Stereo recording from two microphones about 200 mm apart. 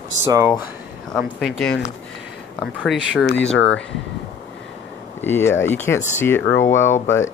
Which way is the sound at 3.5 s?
65° left (ahead or behind).